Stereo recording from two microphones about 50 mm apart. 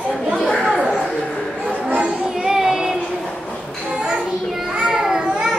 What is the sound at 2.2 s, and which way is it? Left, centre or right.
Child singing, centre.